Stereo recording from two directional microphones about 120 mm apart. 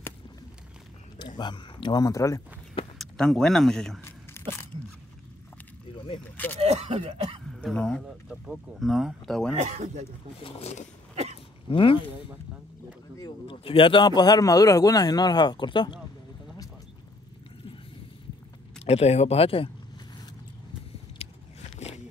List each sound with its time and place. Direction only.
1.4 s speech: 40° left (ahead or behind)
3.0 s speech: 5° left (ahead or behind)
4.0 s tearing: 20° left (ahead or behind)
5.9 s a sound: 45° left (ahead or behind)
6.3 s speech: 15° left (ahead or behind)
6.6 s speech: 60° right (ahead or behind)
7.4 s speech: 5° left (ahead or behind)
9.6 s speech: 80° right
10.4 s speech: 60° left (ahead or behind)
11.7 s speech: 45° left (ahead or behind)
13.5 s speech: 45° left (ahead or behind)
18.9 s speech: 60° left (ahead or behind)
21.2 s biting: 65° left (ahead or behind)